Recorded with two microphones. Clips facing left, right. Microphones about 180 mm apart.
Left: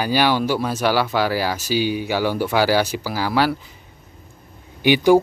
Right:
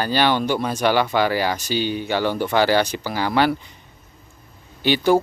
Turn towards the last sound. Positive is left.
turn(degrees=15)  # may be behind; listen again after turning